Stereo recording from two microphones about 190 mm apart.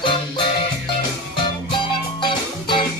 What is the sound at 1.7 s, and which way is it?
Music, 25° left (ahead or behind).